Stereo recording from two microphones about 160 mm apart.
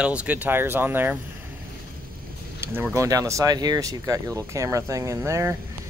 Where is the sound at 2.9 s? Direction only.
20° right (ahead or behind).